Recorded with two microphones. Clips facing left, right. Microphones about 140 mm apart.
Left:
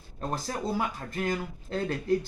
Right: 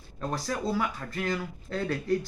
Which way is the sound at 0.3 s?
45° left (ahead or behind).